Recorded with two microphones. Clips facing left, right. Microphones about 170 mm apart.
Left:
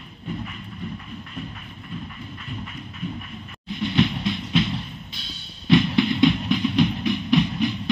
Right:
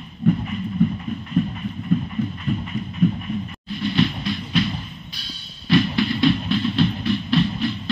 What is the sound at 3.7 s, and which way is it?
Music, 20° left (ahead or behind).